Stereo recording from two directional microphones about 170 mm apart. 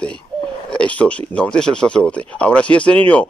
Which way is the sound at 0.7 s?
5° left (ahead or behind).